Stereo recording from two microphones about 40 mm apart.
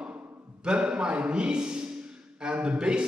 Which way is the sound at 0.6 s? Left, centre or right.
Right.